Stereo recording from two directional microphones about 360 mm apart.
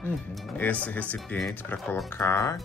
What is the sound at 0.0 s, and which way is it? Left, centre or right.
Speech, centre.